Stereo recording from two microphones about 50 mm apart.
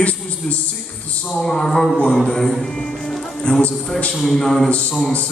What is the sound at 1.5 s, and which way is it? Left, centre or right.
Speech, centre.